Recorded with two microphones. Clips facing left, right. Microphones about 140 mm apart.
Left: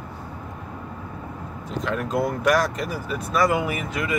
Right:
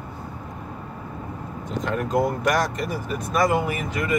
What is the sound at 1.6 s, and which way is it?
Speech, centre (ahead or behind).